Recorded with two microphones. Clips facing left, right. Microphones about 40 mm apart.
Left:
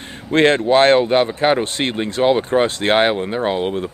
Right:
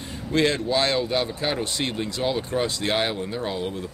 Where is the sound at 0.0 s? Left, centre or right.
Left.